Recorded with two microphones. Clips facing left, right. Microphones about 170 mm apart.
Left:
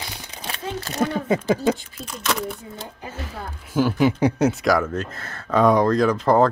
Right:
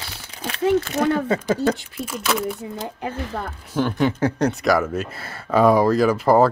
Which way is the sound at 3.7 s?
5° left (ahead or behind).